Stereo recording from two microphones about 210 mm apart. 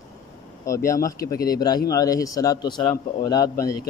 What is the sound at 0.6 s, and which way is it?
Speech, 15° left (ahead or behind).